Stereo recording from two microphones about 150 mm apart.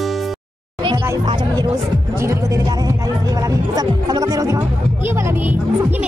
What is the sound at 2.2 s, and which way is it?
Music, 20° right (ahead or behind).